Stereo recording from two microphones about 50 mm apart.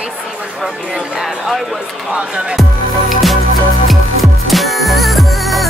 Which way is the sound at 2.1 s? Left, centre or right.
Centre.